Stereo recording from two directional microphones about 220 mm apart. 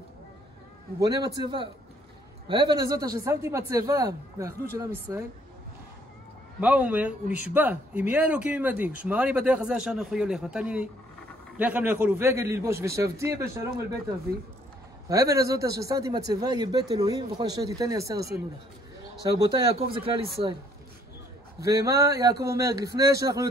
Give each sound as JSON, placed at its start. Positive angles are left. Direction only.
{"t": 0.9, "sound": "a man's voice", "side_deg": -15}
{"t": 6.6, "sound": "a man's voice", "side_deg": -5}
{"t": 15.0, "sound": "a man's voice", "side_deg": -15}
{"t": 19.5, "sound": "a man's voice", "side_deg": -25}
{"t": 21.6, "sound": "a man's voice", "side_deg": -15}